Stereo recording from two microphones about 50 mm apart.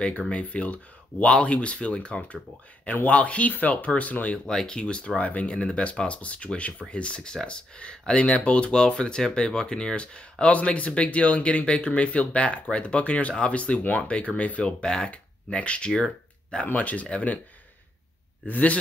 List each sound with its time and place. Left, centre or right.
0.3 s speech: left
4.5 s speech: centre
14.8 s speech: centre; by 17.4 s left
18.5 s speech: left